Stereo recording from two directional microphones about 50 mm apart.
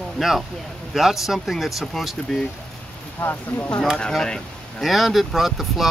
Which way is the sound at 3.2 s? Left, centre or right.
Left.